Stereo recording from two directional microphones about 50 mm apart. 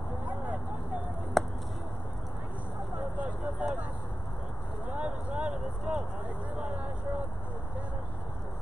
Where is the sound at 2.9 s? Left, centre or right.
Right.